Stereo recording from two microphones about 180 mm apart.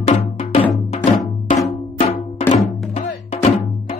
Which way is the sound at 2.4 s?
35° left (ahead or behind).